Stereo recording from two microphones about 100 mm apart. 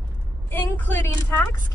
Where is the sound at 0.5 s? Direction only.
20° left (ahead or behind).